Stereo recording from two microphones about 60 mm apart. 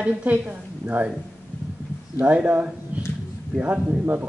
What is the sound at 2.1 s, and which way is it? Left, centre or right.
Speech, right.